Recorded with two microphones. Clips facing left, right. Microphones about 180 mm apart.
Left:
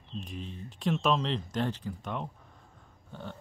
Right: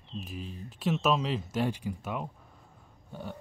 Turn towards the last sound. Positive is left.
turn(degrees=-10)  # may be behind; listen again after turning